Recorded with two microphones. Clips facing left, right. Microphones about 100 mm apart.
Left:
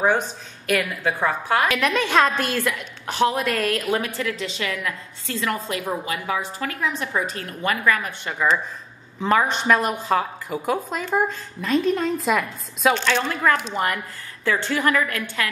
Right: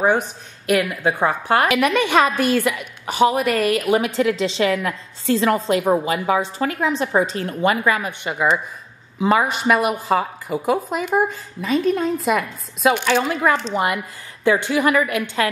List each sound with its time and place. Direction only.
0.7 s a woman's voice: 15° right (ahead or behind)
11.6 s a woman's voice: centre (ahead or behind)